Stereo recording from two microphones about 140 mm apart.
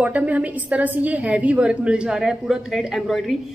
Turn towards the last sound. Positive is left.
turn(degrees=0)  # may be behind; listen again after turning